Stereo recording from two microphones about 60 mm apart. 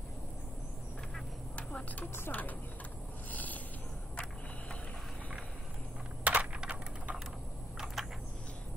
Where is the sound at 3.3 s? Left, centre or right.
Left.